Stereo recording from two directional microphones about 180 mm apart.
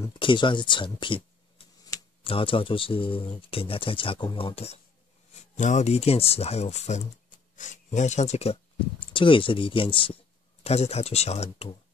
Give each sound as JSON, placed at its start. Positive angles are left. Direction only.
{"t": 0.0, "sound": "speech", "side_deg": 25}
{"t": 2.2, "sound": "speech", "side_deg": 30}